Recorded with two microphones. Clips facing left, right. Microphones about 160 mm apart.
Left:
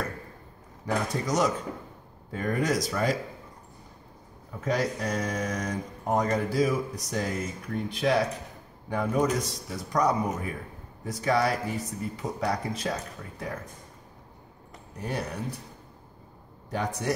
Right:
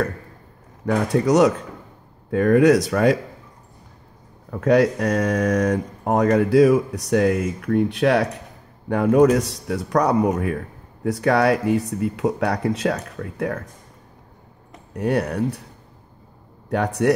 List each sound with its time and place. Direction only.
0.8 s speech: 70° right (ahead or behind)
4.5 s speech: 70° right (ahead or behind)
15.0 s speech: 70° right (ahead or behind)
16.6 s speech: 70° right (ahead or behind)